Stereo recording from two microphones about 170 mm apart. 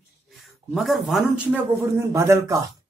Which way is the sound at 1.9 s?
15° right (ahead or behind).